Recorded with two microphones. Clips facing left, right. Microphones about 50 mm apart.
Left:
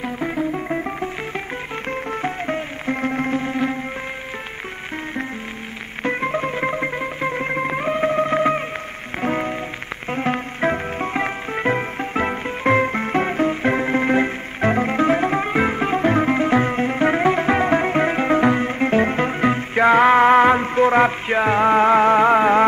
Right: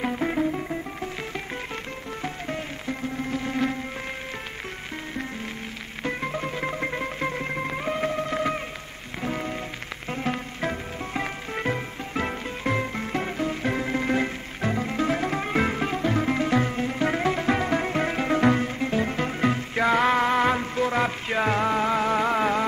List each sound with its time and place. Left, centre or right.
0.0 s music: centre
1.9 s music: left
3.0 s music: left
3.4 s music: left
6.0 s music: left
18.7 s music: left